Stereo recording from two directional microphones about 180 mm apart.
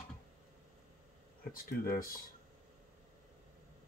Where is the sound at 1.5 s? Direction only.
55° left (ahead or behind).